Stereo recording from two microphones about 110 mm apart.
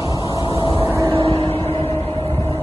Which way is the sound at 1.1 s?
55° right (ahead or behind).